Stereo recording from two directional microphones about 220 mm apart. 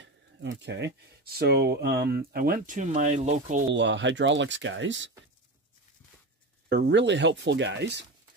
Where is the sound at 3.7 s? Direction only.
55° right (ahead or behind).